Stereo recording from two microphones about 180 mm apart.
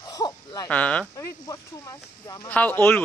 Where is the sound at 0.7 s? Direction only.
5° left (ahead or behind).